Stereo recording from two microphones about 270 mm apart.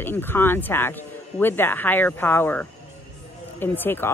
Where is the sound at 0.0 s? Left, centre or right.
Centre.